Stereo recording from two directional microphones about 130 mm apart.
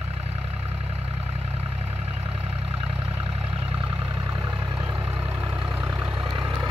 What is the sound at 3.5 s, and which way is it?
Vehicle, 45° right (ahead or behind).